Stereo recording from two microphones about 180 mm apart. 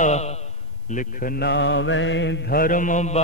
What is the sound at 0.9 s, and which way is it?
Mantra, 55° left (ahead or behind).